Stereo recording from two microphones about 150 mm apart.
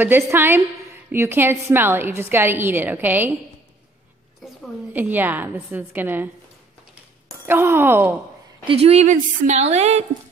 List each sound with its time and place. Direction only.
0.0 s a woman's voice: 15° right (ahead or behind)
4.9 s a woman's voice: 10° right (ahead or behind)
7.4 s a woman's voice: 15° right (ahead or behind)
8.6 s a woman's voice: 40° right (ahead or behind)